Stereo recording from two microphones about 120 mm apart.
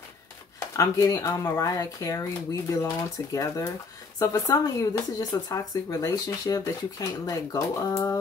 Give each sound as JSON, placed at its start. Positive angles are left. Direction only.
{"t": 0.7, "sound": "speech", "side_deg": 30}